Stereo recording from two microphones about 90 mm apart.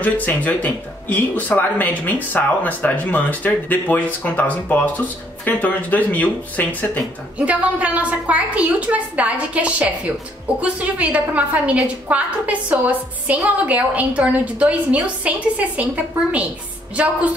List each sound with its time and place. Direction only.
0.0 s speech: 20° left (ahead or behind)
7.3 s a woman's voice: 15° right (ahead or behind)